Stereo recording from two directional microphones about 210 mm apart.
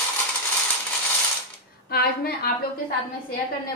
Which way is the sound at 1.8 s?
45° left (ahead or behind).